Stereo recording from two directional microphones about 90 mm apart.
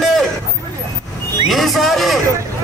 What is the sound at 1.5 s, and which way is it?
Speech, centre (ahead or behind).